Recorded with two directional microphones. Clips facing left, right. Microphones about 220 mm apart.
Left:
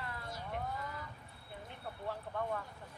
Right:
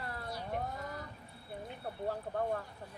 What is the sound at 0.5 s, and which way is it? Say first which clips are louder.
Vehicle: right 1 dB; 45° right (ahead or behind).